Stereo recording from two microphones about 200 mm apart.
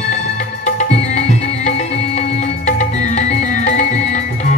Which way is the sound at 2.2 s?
35° left (ahead or behind).